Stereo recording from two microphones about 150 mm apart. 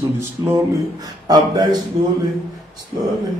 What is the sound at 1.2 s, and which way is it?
Speech, 25° right (ahead or behind).